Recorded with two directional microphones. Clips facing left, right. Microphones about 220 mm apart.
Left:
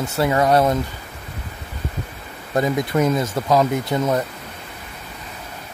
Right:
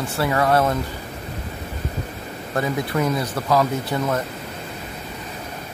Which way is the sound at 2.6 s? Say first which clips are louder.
Left 4 dB; 20° left (ahead or behind).